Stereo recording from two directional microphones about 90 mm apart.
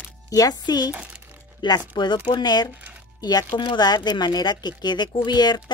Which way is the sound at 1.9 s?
55° left (ahead or behind).